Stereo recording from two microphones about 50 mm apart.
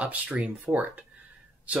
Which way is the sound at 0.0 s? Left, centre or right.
Right.